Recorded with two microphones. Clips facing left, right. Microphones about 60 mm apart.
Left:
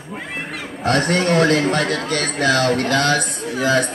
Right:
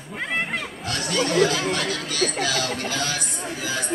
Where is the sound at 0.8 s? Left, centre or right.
Left.